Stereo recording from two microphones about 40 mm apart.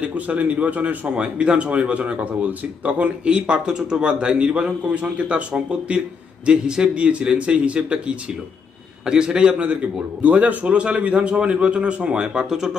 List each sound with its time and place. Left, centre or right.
0.0 s a man's voice: right
5.7 s a man's voice: right
9.0 s speech: centre
10.2 s a man's voice: right; by 12.7 s centre